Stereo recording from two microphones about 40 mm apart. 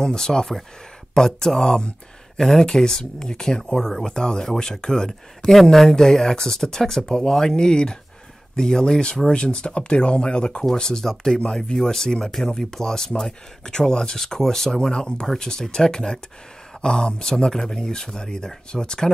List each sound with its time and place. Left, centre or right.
0.0 s speech: centre
5.5 s speech: centre